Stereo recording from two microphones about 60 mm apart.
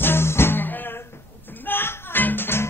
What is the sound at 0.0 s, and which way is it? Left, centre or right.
Music, left.